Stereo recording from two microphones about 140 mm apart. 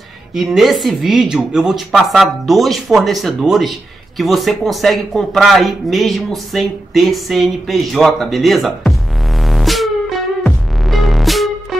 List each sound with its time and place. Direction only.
0.3 s speech: centre (ahead or behind)